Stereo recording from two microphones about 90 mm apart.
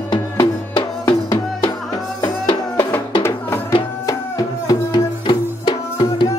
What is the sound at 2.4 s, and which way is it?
Music, 65° left (ahead or behind).